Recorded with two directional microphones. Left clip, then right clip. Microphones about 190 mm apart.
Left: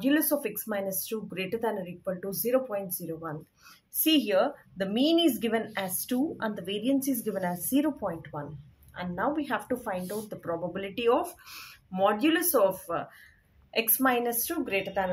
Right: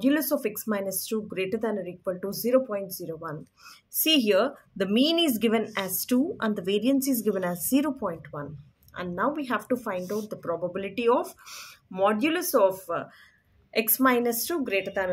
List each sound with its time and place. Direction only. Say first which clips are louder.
0.0 s speech: right 2 dB; 25° right (ahead or behind)
3.9 s speech: right 3 dB; 35° right (ahead or behind)
13.7 s speech: right 3 dB; 30° right (ahead or behind)